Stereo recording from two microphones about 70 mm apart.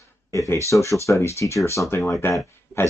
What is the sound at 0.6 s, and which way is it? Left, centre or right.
Speech, left.